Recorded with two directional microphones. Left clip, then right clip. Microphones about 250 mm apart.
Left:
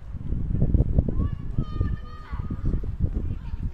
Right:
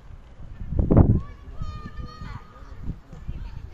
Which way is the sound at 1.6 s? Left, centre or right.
Right.